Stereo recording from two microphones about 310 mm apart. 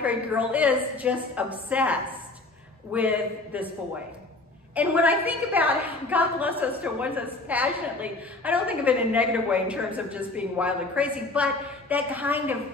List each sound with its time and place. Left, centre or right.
0.0 s a woman's voice: centre
4.7 s a woman's voice: centre